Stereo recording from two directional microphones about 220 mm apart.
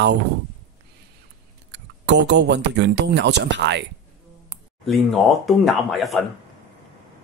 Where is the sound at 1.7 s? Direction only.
50° right (ahead or behind).